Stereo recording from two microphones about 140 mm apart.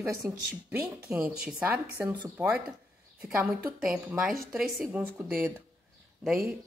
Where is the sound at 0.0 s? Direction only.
20° right (ahead or behind).